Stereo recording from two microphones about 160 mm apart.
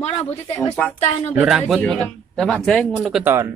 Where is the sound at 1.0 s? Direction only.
45° left (ahead or behind).